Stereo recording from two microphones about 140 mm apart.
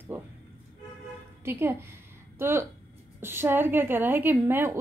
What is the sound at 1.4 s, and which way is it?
A woman's voice, 15° right (ahead or behind).